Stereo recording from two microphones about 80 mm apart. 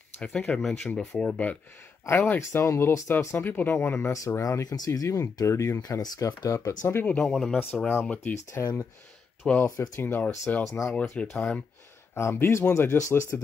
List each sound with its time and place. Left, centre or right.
0.2 s speech: centre
2.1 s speech: left
2.5 s speech: left
4.1 s speech: left
5.9 s speech: left
6.9 s speech: left
9.7 s speech: left
10.0 s speech: left
10.6 s speech: left
11.0 s speech: centre
12.1 s speech: left